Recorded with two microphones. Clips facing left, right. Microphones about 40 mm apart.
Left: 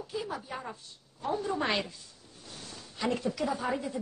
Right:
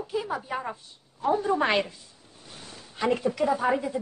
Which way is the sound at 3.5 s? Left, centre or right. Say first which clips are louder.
Right 7 dB; right.